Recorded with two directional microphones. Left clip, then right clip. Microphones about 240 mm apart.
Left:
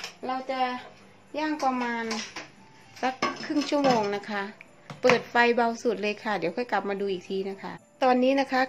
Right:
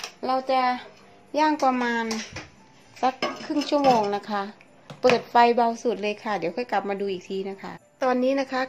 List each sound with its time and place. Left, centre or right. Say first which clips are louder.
0.2 s a woman's voice: right 6 dB; right
3.0 s a woman's voice: right 3 dB; centre